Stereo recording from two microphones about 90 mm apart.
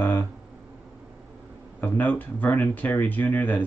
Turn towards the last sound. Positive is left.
turn(degrees=20)  # may be behind; listen again after turning